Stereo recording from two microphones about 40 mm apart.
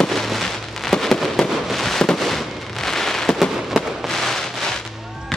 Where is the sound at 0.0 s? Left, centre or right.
Centre.